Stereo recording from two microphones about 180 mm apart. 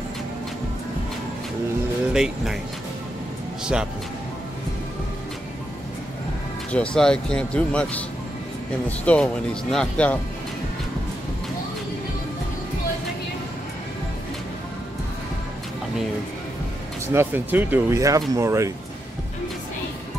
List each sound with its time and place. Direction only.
2.1 s speech: 5° right (ahead or behind)
6.7 s speech: 5° left (ahead or behind)
17.1 s speech: 10° right (ahead or behind)